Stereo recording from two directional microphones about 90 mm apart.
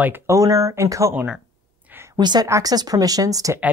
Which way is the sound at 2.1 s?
55° right (ahead or behind).